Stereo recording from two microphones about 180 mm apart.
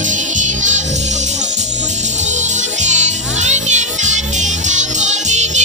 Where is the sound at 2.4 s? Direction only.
40° right (ahead or behind).